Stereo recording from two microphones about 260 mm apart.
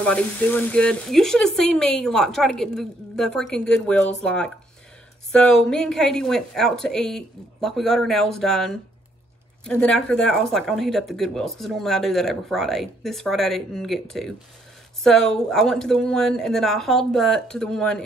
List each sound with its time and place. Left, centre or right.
0.0 s speech: centre